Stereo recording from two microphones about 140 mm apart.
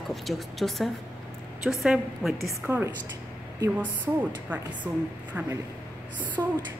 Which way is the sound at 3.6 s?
10° right (ahead or behind).